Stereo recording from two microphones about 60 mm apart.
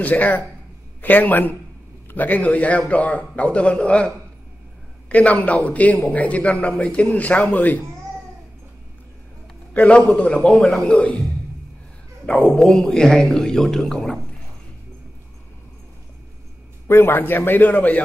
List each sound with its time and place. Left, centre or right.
0.0 s a man's voice: left
5.1 s a man's voice: left
9.8 s a man's voice: left
12.4 s a man's voice: centre
16.8 s a man's voice: left